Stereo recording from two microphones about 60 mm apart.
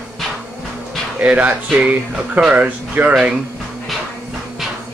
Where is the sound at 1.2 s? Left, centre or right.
Right.